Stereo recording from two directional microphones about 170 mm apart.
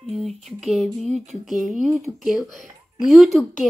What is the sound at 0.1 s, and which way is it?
A child's voice, centre (ahead or behind).